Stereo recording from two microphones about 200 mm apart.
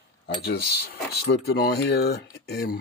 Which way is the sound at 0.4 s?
50° left (ahead or behind).